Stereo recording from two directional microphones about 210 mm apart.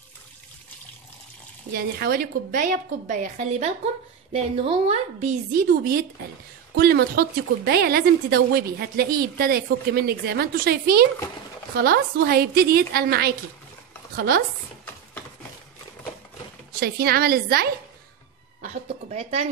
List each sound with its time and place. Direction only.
1.7 s a woman's voice: 45° right (ahead or behind)
16.8 s a woman's voice: 45° right (ahead or behind)
18.6 s a woman's voice: 35° right (ahead or behind)